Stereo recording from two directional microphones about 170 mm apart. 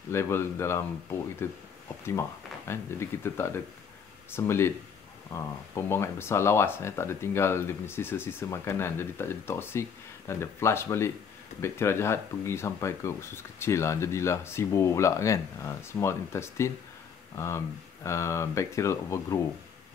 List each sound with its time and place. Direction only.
0.1 s speech: 15° left (ahead or behind)
2.7 s speech: 15° left (ahead or behind)
18.0 s speech: 15° left (ahead or behind)